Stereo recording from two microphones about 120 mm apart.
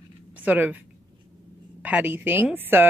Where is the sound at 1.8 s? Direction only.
15° right (ahead or behind).